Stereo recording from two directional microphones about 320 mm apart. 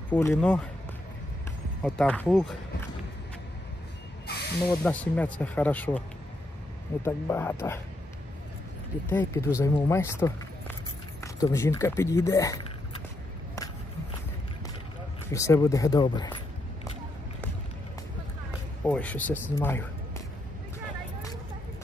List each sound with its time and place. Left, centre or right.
0.1 s speech: centre
1.8 s speech: centre
4.3 s snake: left
4.8 s speech: centre
7.1 s speech: centre
9.1 s speech: centre
11.3 s speech: centre
15.3 s speech: centre
18.9 s speech: centre
19.6 s music: centre